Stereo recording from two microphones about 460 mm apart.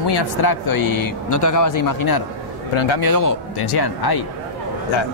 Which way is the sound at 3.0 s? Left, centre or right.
Left.